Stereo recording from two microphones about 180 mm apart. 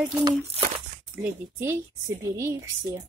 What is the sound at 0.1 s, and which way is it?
A woman's voice, 20° right (ahead or behind).